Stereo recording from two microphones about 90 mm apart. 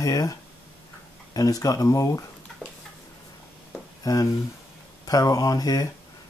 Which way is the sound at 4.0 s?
40° left (ahead or behind).